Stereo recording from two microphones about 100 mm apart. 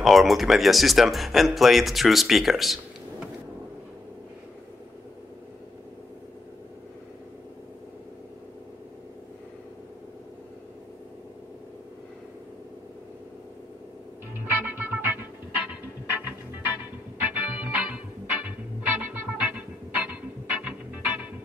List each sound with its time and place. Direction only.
0.0 s speech: centre (ahead or behind)
14.6 s music: 20° right (ahead or behind)
16.6 s music: 20° right (ahead or behind)